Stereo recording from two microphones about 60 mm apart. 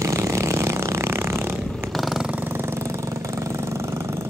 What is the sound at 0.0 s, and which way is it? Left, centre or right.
Vehicle, right.